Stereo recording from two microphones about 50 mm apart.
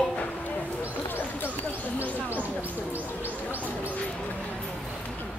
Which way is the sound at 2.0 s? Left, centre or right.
Right.